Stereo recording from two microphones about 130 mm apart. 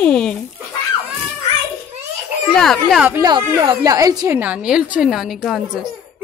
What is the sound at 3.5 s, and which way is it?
Speech, 20° right (ahead or behind).